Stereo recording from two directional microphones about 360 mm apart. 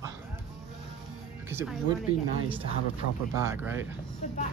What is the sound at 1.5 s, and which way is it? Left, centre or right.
Speech, centre.